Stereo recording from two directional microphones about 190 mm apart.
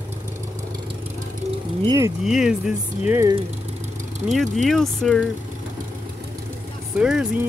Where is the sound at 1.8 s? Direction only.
20° right (ahead or behind).